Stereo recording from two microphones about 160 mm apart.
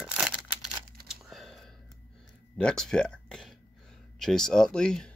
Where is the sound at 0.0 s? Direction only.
5° right (ahead or behind).